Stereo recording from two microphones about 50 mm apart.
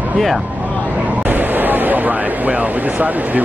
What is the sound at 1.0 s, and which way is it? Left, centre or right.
Speech, right.